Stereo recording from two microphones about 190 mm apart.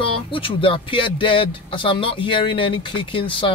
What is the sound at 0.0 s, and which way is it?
Speech, 25° left (ahead or behind).